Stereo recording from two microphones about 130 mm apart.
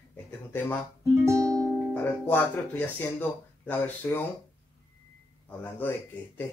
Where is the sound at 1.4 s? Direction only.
25° right (ahead or behind).